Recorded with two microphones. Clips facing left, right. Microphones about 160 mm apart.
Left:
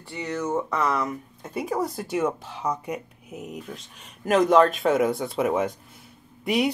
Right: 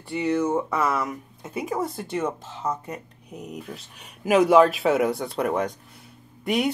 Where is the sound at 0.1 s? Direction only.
15° right (ahead or behind).